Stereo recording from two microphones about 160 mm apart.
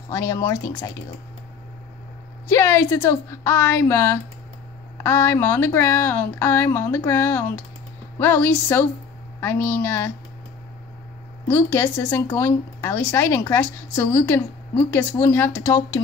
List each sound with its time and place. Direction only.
0.1 s speech: 20° left (ahead or behind)
2.4 s speech: 15° left (ahead or behind)
11.4 s speech: 15° left (ahead or behind)